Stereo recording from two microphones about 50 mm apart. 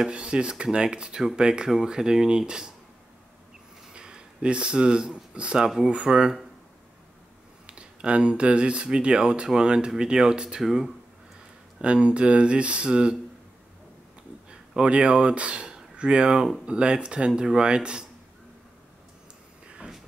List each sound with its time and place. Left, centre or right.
0.1 s speech: centre
3.9 s speech: centre
7.6 s speech: right
11.8 s speech: right
14.8 s speech: right